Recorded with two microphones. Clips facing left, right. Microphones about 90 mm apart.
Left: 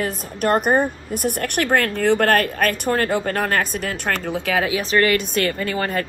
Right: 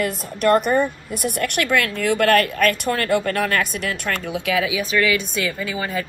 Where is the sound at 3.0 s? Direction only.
55° right (ahead or behind).